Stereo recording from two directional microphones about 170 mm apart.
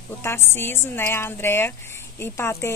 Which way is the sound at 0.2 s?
15° left (ahead or behind).